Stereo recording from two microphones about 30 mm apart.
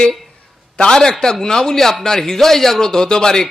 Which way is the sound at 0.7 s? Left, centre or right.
Left.